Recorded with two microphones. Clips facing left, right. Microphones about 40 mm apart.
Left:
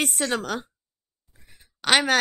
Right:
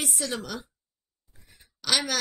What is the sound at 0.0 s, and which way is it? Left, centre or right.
Speech, left.